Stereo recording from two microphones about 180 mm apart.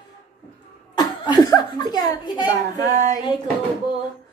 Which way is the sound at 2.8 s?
45° right (ahead or behind).